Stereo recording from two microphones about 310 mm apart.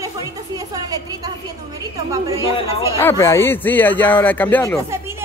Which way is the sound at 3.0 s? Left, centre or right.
Centre.